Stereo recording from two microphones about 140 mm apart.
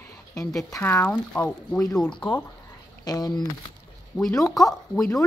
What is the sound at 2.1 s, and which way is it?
Speech, 30° left (ahead or behind).